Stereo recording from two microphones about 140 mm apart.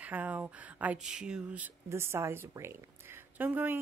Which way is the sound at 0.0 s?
10° right (ahead or behind).